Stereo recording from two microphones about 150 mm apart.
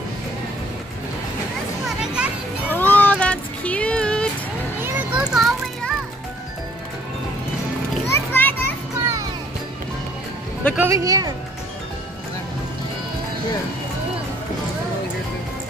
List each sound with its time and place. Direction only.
1.9 s children playing: 5° right (ahead or behind)
2.7 s a sound: 10° left (ahead or behind)
4.8 s children playing: 5° right (ahead or behind)
8.1 s children playing: 15° left (ahead or behind)
10.8 s speech: 20° right (ahead or behind)